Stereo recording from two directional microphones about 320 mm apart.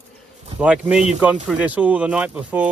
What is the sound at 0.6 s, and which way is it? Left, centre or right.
Speech, centre.